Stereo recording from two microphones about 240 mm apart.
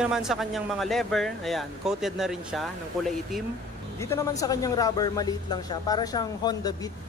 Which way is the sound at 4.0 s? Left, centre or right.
Centre.